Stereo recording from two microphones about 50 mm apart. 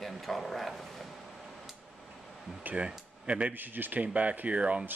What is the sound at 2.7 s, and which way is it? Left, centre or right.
Speech, right.